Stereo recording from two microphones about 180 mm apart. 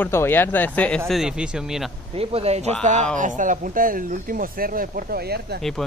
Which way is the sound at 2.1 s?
35° right (ahead or behind).